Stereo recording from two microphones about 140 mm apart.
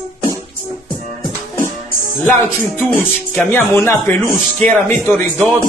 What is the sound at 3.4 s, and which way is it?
Speech, 15° left (ahead or behind).